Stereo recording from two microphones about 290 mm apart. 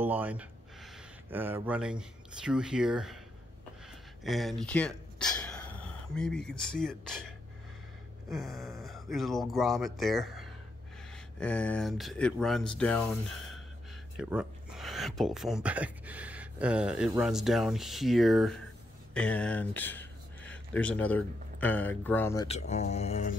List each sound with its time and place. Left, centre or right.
0.0 s speech: centre
4.2 s speech: centre
14.1 s speech: centre
22.5 s speech: left